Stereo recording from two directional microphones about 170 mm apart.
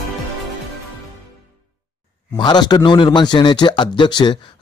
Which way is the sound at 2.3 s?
25° left (ahead or behind).